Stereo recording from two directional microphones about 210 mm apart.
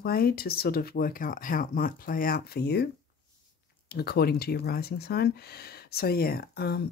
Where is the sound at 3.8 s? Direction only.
50° left (ahead or behind).